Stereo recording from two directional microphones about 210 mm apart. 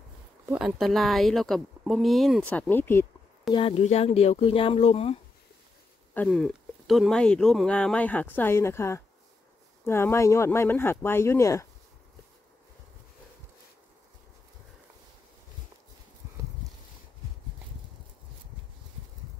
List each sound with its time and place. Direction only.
0.5 s speech: centre (ahead or behind)
3.5 s speech: 30° left (ahead or behind)
6.1 s speech: 5° left (ahead or behind)